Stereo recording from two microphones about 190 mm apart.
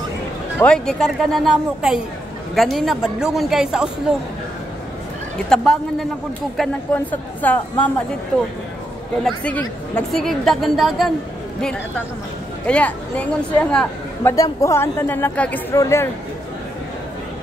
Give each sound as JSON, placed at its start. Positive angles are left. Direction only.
{"t": 0.6, "sound": "a woman's voice", "side_deg": 5}
{"t": 5.5, "sound": "a woman's voice", "side_deg": 5}
{"t": 12.6, "sound": "a woman's voice", "side_deg": 5}
{"t": 14.3, "sound": "a woman's voice", "side_deg": 15}